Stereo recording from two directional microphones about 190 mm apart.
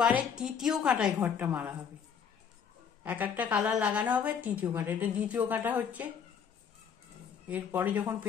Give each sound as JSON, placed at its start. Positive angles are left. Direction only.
{"t": 0.0, "sound": "a woman's voice", "side_deg": -5}
{"t": 3.0, "sound": "a woman's voice", "side_deg": -10}
{"t": 7.4, "sound": "a woman's voice", "side_deg": -10}